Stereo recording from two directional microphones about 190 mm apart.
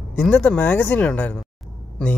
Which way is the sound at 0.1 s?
5° left (ahead or behind).